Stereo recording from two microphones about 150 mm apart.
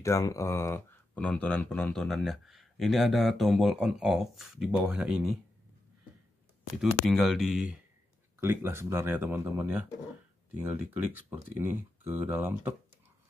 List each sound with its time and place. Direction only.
0.0 s speech: 20° left (ahead or behind)
1.1 s speech: 10° left (ahead or behind)
6.8 s speech: centre (ahead or behind)
8.4 s speech: 15° right (ahead or behind)